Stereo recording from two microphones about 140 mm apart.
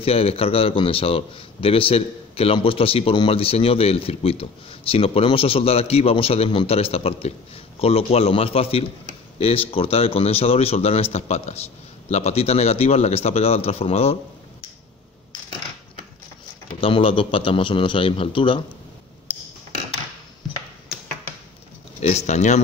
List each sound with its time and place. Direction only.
0.0 s a man's voice: 45° left (ahead or behind)
16.8 s a man's voice: 40° left (ahead or behind)
22.0 s speech: 55° left (ahead or behind)